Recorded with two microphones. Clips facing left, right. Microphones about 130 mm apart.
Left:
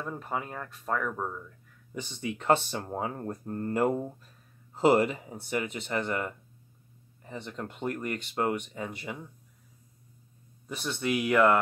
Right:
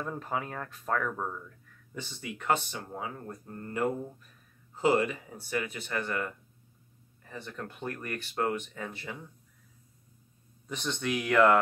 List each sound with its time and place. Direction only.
0.0 s speech: centre (ahead or behind)
2.0 s speech: 20° left (ahead or behind)
10.7 s speech: 5° left (ahead or behind)